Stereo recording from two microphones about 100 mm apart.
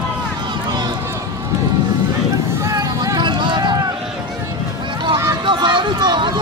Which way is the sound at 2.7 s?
45° right (ahead or behind).